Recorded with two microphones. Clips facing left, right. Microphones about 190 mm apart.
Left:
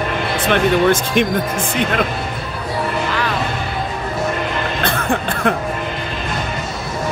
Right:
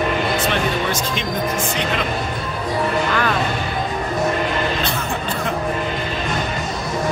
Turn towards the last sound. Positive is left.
turn(degrees=55)  # may be behind; listen again after turning